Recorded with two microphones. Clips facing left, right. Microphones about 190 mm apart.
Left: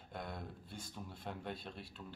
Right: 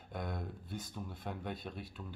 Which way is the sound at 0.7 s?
25° left (ahead or behind).